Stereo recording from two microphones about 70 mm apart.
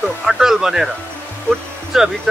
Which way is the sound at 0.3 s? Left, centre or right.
Centre.